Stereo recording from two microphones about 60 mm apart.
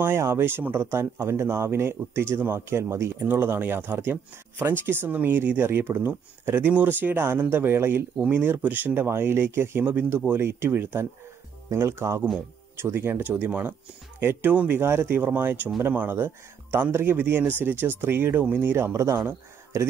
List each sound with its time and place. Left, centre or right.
0.0 s speech: right
0.8 s speech: right
2.8 s speech: right
3.2 s speech: right
9.1 s speech: right
14.8 s speech: right
15.1 s speech: right